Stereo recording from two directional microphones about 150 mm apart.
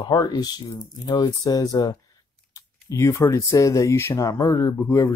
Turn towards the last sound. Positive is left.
turn(degrees=15)  # may be behind; listen again after turning